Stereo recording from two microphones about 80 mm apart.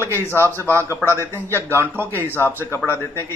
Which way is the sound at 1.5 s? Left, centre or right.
Right.